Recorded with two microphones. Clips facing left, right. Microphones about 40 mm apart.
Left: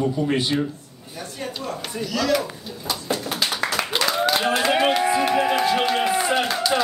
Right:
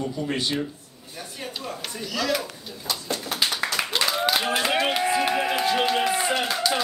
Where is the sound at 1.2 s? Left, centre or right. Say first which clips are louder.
Left 4 dB; centre.